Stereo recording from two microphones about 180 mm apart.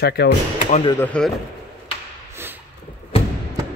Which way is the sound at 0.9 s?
5° left (ahead or behind).